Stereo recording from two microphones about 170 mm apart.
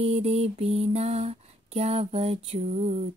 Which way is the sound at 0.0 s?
35° right (ahead or behind).